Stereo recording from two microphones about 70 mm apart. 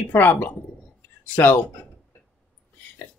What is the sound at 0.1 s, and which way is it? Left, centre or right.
A woman's voice, left.